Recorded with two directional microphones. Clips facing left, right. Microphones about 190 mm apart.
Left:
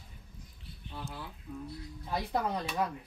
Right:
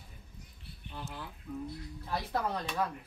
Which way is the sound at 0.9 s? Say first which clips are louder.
Left 1 dB; 5° left (ahead or behind).